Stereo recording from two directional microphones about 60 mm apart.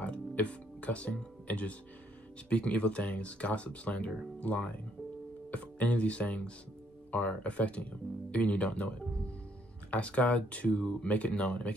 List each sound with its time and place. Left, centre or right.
0.0 s music: left
2.5 s speech: left